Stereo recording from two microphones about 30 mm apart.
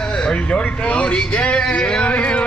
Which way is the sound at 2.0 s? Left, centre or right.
Left.